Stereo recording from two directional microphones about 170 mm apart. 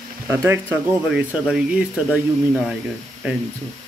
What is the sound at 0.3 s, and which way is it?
Speech, 15° right (ahead or behind).